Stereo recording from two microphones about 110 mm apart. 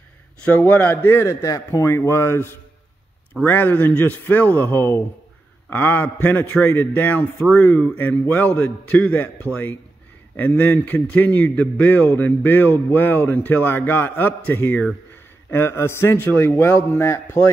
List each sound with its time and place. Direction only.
0.5 s a man's voice: 15° left (ahead or behind)